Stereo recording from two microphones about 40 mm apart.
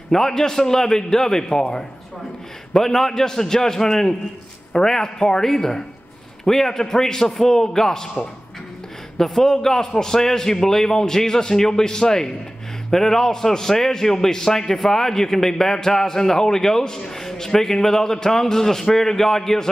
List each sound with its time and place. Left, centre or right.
0.1 s a man's voice: centre
9.2 s a man's voice: centre